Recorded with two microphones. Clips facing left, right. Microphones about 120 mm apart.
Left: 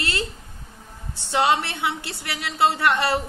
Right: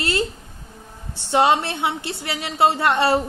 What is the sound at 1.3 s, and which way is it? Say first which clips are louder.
A woman's voice: right 3 dB; 25° right (ahead or behind).